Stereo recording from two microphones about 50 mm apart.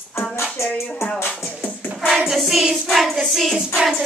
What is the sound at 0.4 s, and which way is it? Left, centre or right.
Music, left.